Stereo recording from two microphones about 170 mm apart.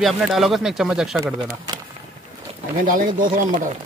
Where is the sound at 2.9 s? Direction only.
50° right (ahead or behind).